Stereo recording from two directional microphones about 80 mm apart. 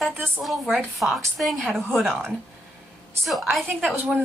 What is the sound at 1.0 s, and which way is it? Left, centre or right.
A woman's voice, centre.